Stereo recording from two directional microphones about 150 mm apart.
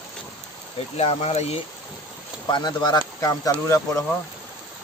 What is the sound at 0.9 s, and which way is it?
Speech, 45° left (ahead or behind).